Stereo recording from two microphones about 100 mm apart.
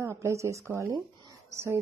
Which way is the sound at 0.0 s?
30° right (ahead or behind).